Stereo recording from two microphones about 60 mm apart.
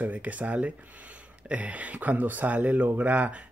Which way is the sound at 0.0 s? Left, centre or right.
Right.